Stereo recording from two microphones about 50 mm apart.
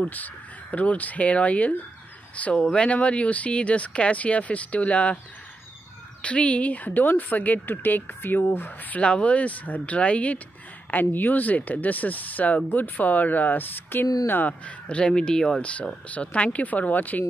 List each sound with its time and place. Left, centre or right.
0.1 s speech: left
6.2 s speech: left
8.9 s speech: left
10.9 s speech: left
14.9 s speech: left